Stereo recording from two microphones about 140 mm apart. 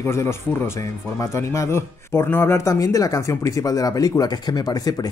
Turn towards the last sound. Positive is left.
turn(degrees=25)  # may be behind; listen again after turning